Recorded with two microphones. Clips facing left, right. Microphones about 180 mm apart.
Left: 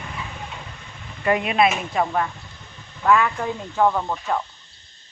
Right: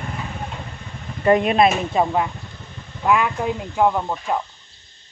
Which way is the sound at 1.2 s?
40° right (ahead or behind).